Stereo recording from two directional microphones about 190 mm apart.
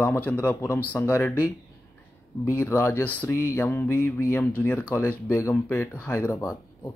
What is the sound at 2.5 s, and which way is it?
Speech, 10° left (ahead or behind).